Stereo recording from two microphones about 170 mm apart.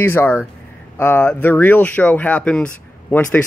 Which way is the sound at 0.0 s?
10° left (ahead or behind).